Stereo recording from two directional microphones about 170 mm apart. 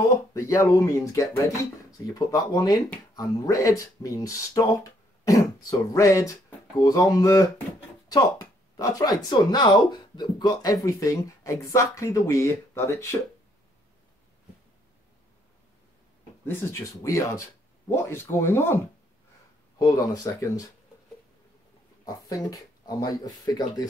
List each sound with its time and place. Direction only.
0.3 s speech: 20° left (ahead or behind)
16.4 s speech: 15° left (ahead or behind)
19.8 s speech: 20° left (ahead or behind)
22.0 s speech: 20° left (ahead or behind)